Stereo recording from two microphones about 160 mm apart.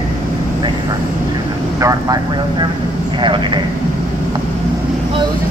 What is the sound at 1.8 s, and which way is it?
Vehicle, 20° right (ahead or behind).